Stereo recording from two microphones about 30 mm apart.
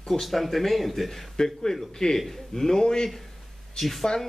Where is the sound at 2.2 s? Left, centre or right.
Centre.